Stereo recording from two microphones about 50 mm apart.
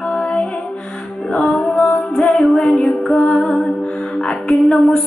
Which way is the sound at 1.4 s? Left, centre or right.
Centre.